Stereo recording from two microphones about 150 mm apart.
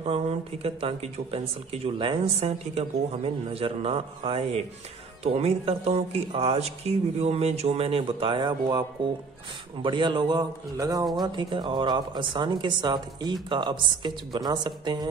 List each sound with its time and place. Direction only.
0.0 s speech: 40° right (ahead or behind); by 15.0 s 25° right (ahead or behind)